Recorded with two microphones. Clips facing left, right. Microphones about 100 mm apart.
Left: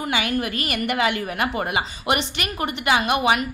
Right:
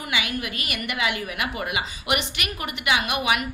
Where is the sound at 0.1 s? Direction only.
40° left (ahead or behind).